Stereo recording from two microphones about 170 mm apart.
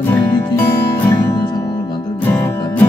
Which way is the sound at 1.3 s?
25° left (ahead or behind).